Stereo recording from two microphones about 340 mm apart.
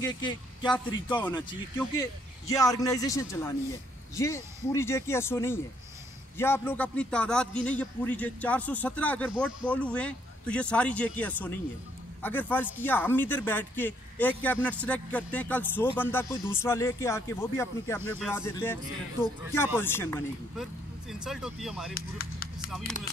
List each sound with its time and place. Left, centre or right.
0.0 s speech: centre
19.8 s speech: centre
21.9 s chop: left
22.7 s speech: centre